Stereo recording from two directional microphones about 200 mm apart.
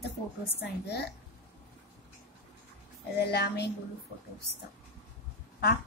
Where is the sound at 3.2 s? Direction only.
55° left (ahead or behind).